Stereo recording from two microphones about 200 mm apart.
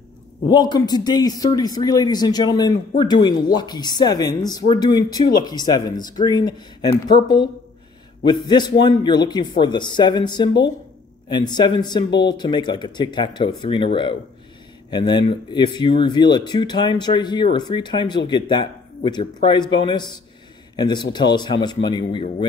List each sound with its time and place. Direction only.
0.5 s speech: 20° left (ahead or behind)